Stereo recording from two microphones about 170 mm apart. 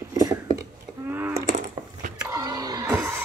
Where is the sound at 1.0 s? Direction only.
10° right (ahead or behind).